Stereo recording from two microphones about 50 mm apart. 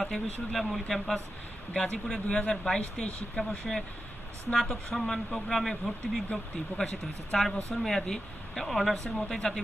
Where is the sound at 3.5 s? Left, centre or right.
Centre.